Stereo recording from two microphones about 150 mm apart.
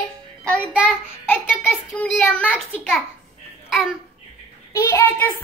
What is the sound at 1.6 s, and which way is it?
Speech, 15° left (ahead or behind).